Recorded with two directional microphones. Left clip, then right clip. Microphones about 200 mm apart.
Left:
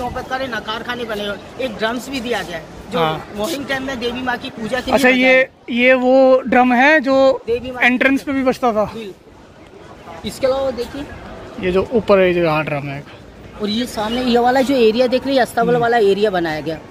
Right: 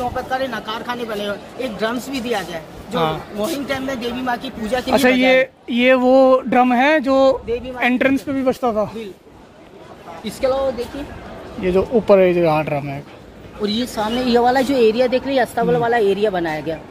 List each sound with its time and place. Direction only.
0.3 s speech: 65° right (ahead or behind)
2.9 s a woman's voice: centre (ahead or behind)
3.3 s speech: 50° right (ahead or behind)
4.8 s speech: 10° right (ahead or behind)
8.3 s speech: 10° left (ahead or behind)
10.2 s a woman's voice: 60° left (ahead or behind)
11.6 s speech: 10° right (ahead or behind)
13.7 s a woman's voice: 25° left (ahead or behind)
14.8 s a woman's voice: 60° left (ahead or behind)